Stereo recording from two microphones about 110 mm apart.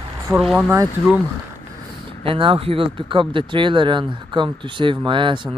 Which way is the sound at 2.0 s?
50° right (ahead or behind).